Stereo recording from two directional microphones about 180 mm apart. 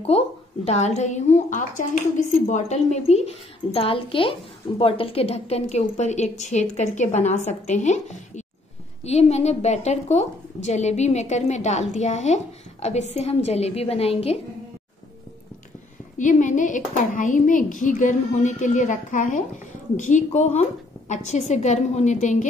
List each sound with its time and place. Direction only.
0.7 s a woman's voice: 40° left (ahead or behind)
16.2 s a woman's voice: 45° left (ahead or behind)